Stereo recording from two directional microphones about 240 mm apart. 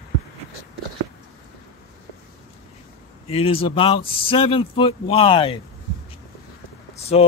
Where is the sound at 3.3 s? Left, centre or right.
Left.